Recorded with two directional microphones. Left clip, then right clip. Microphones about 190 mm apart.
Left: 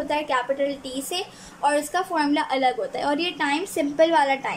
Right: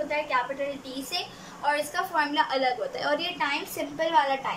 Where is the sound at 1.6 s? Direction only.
35° left (ahead or behind).